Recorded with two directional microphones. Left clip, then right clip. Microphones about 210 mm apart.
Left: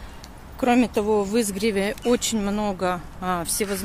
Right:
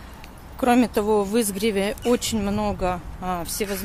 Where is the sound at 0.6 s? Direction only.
5° right (ahead or behind).